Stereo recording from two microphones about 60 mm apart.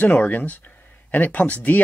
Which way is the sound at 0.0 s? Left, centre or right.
Left.